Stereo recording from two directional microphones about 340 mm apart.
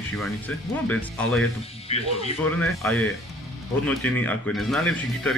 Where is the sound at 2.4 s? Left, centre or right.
Centre.